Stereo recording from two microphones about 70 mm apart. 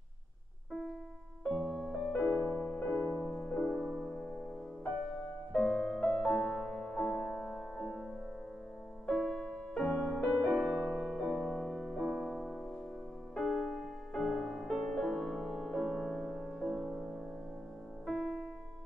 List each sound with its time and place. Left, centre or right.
1.4 s music: centre
2.4 s music: left
3.0 s music: left
3.3 s music: centre
3.7 s music: centre
5.5 s music: centre
9.1 s music: centre
11.8 s music: centre